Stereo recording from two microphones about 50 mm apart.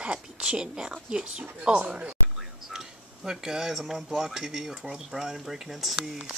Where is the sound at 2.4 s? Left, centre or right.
Centre.